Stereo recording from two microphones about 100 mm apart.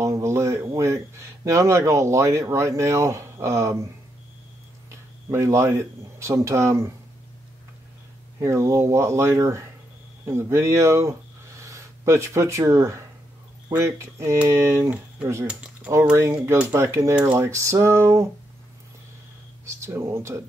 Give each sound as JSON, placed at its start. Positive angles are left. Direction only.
{"t": 0.0, "sound": "speech", "side_deg": -30}
{"t": 4.9, "sound": "a man's voice", "side_deg": -30}
{"t": 8.4, "sound": "speech", "side_deg": -30}
{"t": 15.4, "sound": "speech", "side_deg": -10}
{"t": 16.1, "sound": "speech", "side_deg": -25}
{"t": 19.6, "sound": "speech", "side_deg": -30}